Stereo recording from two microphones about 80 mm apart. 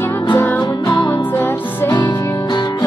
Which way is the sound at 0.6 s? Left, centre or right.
Left.